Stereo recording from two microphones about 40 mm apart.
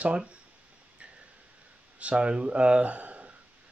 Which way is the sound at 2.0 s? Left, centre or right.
Right.